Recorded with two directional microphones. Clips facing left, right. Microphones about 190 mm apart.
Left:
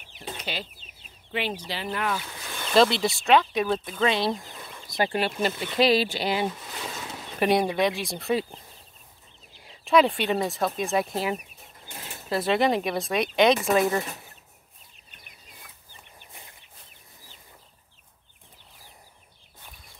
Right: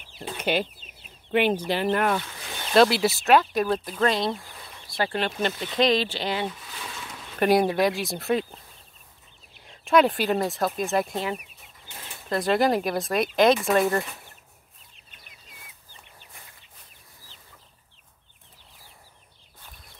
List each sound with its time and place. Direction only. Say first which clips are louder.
0.4 s speech: right 13 dB; 55° right (ahead or behind)
2.7 s speech: right 2 dB; 5° right (ahead or behind)
4.4 s speech: left 3 dB; 20° left (ahead or behind)
6.7 s a sound: left 3 dB; 40° left (ahead or behind)
7.3 s speech: right 2 dB; centre (ahead or behind)
9.7 s speech: right 1 dB; centre (ahead or behind)
12.3 s speech: right 1 dB; centre (ahead or behind)
15.9 s chicken: left 1 dB; 15° left (ahead or behind)